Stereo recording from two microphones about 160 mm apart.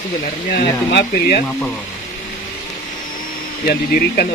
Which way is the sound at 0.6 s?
75° left (ahead or behind).